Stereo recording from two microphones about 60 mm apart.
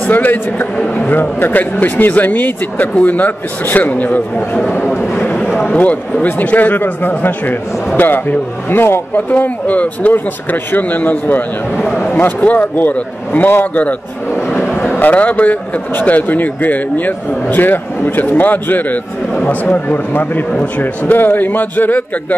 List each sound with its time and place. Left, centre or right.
0.0 s speech: left
6.2 s a man's voice: left